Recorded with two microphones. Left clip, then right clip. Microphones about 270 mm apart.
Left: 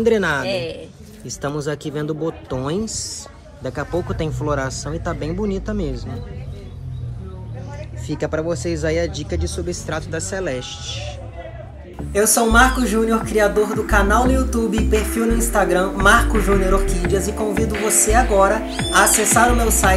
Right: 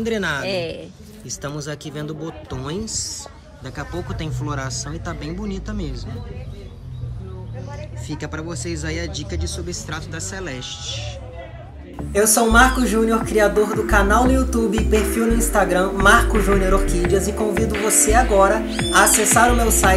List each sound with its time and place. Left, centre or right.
0.0 s speech: centre
0.5 s a man's voice: right
1.3 s speech: centre
8.1 s speech: centre